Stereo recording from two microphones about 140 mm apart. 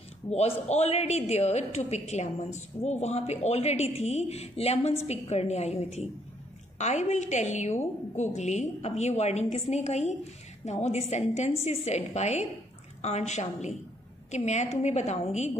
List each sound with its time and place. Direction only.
0.3 s a woman's voice: 50° left (ahead or behind)